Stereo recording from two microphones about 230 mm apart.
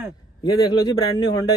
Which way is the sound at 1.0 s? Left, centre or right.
Centre.